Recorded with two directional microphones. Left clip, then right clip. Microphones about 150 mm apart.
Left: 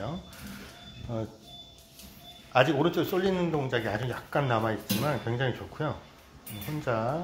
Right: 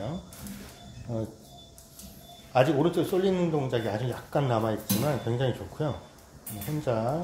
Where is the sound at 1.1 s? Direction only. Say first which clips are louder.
Right 1 dB; 25° left (ahead or behind).